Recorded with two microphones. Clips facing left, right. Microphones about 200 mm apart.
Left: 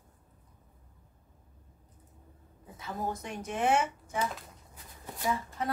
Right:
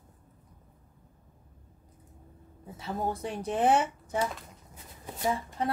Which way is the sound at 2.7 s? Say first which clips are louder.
Right 3 dB; 30° right (ahead or behind).